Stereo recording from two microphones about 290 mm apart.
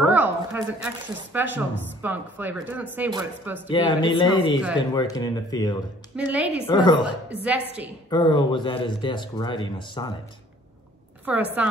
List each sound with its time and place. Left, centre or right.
0.1 s a woman's voice: centre
3.7 s speech: centre
6.1 s a woman's voice: centre
6.6 s a woman's voice: centre
11.2 s a woman's voice: centre